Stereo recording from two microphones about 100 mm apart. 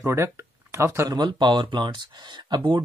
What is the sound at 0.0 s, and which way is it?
Speech, 25° right (ahead or behind).